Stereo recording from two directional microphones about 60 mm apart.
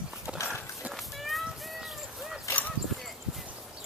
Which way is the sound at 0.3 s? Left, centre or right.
Centre.